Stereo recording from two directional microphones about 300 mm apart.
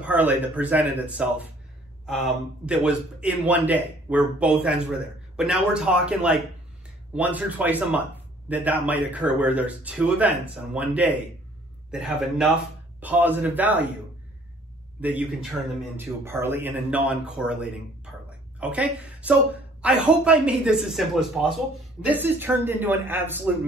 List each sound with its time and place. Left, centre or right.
0.0 s a man's voice: centre
15.0 s a man's voice: centre